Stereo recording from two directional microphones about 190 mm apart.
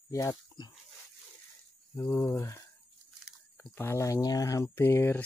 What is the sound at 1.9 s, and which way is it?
Speech, 15° left (ahead or behind).